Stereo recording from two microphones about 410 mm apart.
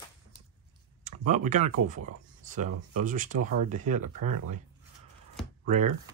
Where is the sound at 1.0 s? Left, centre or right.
Centre.